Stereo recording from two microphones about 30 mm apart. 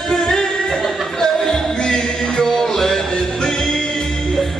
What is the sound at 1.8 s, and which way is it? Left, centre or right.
Music, left.